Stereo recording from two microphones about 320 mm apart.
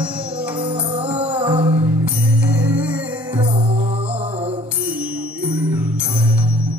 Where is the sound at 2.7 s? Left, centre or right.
Centre.